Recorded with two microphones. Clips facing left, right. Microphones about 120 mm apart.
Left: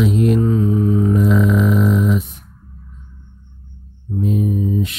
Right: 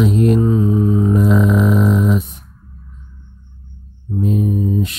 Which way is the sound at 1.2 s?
40° right (ahead or behind).